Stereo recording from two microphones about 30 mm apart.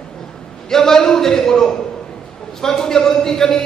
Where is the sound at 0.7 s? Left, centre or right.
Centre.